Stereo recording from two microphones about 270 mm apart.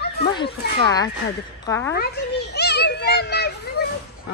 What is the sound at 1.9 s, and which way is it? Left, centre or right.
Speech, left.